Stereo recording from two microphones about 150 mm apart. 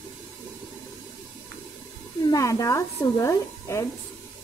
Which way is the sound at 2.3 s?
20° left (ahead or behind).